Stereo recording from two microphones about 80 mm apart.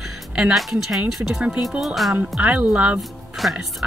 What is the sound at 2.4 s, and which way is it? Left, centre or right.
Speech, centre.